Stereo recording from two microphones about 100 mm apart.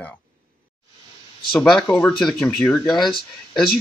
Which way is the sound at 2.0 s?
5° left (ahead or behind).